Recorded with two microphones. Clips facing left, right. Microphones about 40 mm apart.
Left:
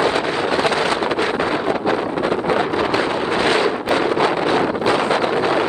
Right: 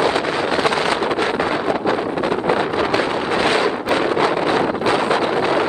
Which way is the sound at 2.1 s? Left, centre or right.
Right.